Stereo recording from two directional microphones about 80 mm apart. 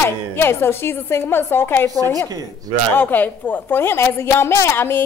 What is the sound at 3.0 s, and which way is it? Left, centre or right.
A woman's voice, left.